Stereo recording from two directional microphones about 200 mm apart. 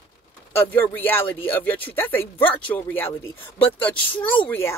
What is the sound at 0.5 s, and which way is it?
Speech, 10° left (ahead or behind).